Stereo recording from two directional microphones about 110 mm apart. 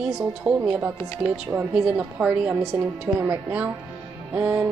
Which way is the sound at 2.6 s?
25° right (ahead or behind).